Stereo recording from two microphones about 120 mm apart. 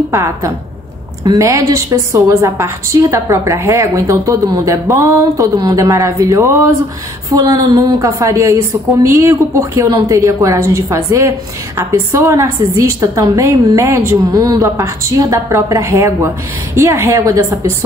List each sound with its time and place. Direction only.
0.1 s a woman's voice: 25° right (ahead or behind)